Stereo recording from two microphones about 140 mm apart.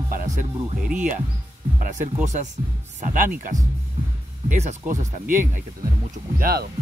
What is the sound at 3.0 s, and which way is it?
Speech, 75° right (ahead or behind).